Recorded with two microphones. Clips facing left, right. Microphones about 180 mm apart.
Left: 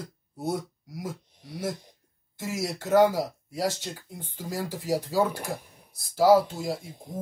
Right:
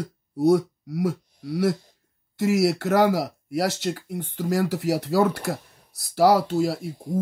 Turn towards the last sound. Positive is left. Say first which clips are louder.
# right 8 dB
turn(degrees=-70)  # may be behind; listen again after turning